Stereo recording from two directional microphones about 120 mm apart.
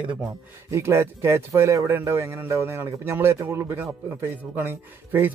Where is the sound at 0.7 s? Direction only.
25° right (ahead or behind).